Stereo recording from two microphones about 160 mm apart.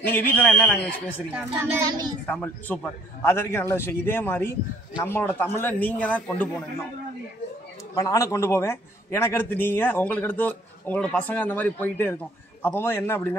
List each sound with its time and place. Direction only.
0.3 s a man's voice: 10° left (ahead or behind)
1.3 s a child's voice: 10° right (ahead or behind)
1.9 s a child's voice: 25° right (ahead or behind)
2.2 s a man's voice: 10° left (ahead or behind)
7.9 s a man's voice: 20° left (ahead or behind)